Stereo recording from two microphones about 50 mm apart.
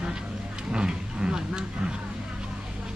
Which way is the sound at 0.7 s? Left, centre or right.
Centre.